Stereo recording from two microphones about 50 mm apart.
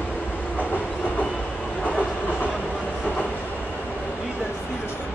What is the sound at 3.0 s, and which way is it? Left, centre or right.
Train, left.